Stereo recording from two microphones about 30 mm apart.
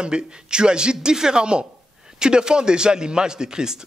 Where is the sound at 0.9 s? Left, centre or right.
Centre.